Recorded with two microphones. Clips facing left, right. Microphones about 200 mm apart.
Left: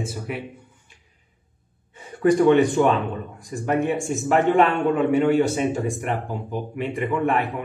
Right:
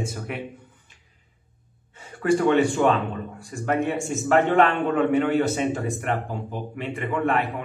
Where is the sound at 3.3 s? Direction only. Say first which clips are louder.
Left 2 dB; 15° left (ahead or behind).